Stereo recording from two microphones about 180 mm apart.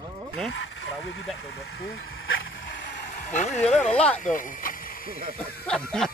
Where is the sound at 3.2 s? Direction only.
40° left (ahead or behind).